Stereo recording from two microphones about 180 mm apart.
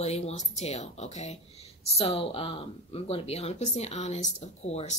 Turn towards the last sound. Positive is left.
turn(degrees=35)  # may be behind; listen again after turning